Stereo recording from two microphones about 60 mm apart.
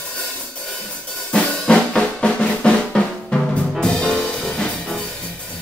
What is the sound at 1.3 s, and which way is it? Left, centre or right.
Drum, centre.